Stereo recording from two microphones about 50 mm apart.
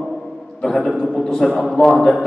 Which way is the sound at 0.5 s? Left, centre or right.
Centre.